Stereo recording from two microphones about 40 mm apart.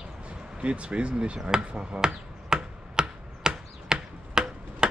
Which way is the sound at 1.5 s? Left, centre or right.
Right.